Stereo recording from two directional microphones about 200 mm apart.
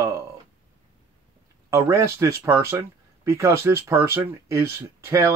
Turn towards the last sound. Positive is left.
turn(degrees=-15)  # may be behind; listen again after turning